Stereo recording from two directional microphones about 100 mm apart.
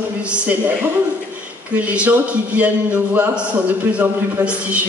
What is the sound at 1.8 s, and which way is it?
A man's voice, 15° right (ahead or behind).